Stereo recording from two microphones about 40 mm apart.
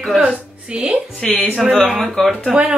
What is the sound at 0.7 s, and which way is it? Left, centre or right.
Speech, right.